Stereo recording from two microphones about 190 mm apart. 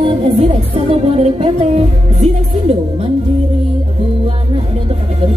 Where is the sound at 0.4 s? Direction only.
35° right (ahead or behind).